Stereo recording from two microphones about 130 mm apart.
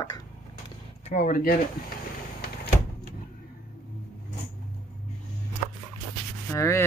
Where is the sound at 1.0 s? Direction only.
75° left (ahead or behind).